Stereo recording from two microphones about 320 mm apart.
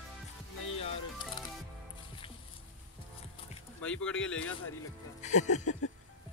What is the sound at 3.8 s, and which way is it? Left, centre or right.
Speech, centre.